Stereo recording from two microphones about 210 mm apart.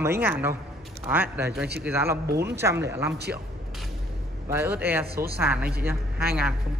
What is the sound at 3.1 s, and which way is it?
Speech, 50° right (ahead or behind).